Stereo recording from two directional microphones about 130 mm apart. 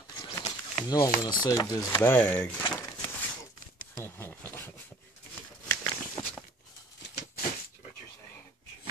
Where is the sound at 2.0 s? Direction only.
15° left (ahead or behind).